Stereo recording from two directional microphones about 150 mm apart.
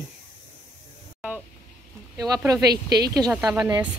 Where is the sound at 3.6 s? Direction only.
30° right (ahead or behind).